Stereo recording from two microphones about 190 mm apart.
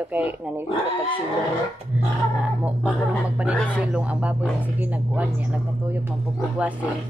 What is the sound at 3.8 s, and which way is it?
Speech, 5° right (ahead or behind).